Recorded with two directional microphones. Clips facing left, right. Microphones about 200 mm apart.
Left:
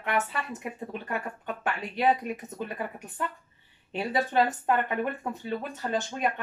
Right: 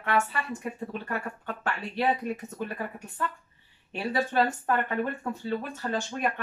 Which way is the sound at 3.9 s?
20° left (ahead or behind).